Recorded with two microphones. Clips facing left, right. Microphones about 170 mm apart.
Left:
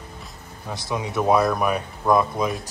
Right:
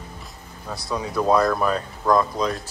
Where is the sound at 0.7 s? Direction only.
20° left (ahead or behind).